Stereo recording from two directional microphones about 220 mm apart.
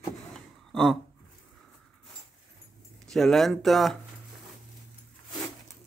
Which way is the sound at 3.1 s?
Centre (ahead or behind).